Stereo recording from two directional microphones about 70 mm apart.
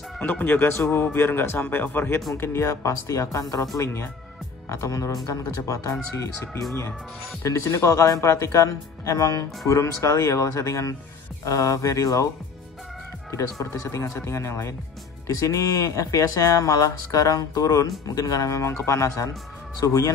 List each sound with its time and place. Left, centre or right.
0.2 s speech: left
0.6 s speech: left
3.7 s speech: left
13.3 s speech: left
19.8 s speech: left